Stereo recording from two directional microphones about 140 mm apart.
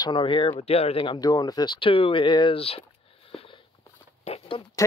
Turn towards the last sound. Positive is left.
turn(degrees=45)  # may be behind; listen again after turning